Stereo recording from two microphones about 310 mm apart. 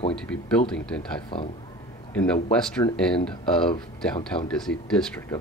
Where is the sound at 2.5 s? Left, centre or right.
Centre.